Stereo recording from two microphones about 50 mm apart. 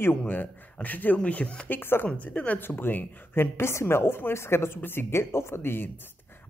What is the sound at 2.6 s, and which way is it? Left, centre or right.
A woman's voice, left.